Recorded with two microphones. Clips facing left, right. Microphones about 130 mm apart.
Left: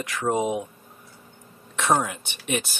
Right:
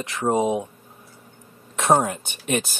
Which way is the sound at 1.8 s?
40° right (ahead or behind).